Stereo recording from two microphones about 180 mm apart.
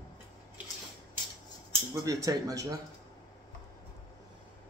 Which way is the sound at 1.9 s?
20° right (ahead or behind).